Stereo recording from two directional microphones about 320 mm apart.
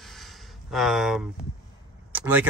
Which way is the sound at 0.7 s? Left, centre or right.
Centre.